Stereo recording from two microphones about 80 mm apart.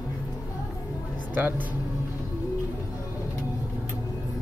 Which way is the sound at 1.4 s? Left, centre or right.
Right.